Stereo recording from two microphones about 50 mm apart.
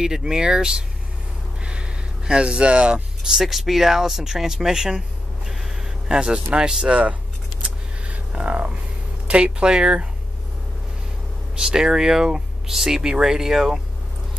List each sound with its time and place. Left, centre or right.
0.0 s speech: centre
1.6 s a sound: right
3.3 s speech: centre; by 7.2 s right
7.6 s a sound: right
9.3 s speech: right
11.5 s speech: centre